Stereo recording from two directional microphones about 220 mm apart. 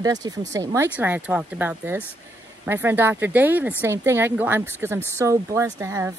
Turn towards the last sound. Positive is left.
turn(degrees=-15)  # may be behind; listen again after turning